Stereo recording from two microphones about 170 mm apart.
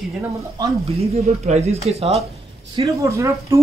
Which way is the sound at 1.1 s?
40° right (ahead or behind).